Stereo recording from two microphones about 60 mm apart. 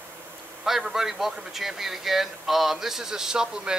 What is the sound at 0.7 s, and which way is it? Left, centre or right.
A man's voice, centre.